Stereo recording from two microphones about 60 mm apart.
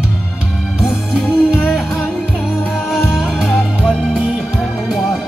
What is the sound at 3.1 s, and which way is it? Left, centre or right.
Music, centre.